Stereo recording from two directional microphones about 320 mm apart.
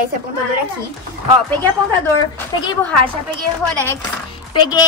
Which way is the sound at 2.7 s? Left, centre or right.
Centre.